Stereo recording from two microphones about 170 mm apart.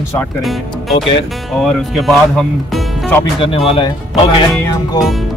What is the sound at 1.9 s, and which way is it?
Speech, centre (ahead or behind).